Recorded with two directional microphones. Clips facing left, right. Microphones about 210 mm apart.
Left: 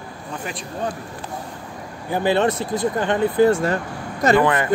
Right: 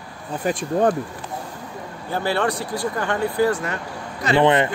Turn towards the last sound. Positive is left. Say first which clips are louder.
# right 1 dB
turn(degrees=-25)  # may be behind; listen again after turning